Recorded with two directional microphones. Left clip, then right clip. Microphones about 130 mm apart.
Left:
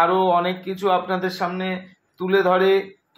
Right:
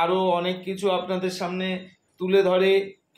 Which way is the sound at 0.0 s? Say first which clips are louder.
Left 5 dB; 40° left (ahead or behind).